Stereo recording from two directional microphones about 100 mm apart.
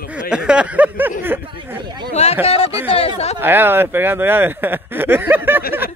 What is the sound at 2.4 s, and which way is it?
Speech, 85° left.